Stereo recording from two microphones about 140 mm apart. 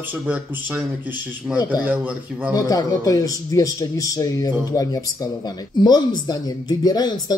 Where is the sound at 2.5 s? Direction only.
25° left (ahead or behind).